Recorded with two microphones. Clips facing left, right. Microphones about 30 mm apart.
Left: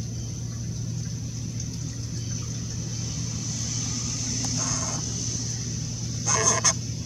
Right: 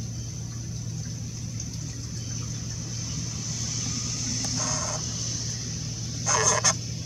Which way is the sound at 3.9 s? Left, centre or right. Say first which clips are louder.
Left 1 dB; centre.